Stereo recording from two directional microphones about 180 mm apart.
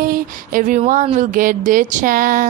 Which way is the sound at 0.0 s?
50° right (ahead or behind).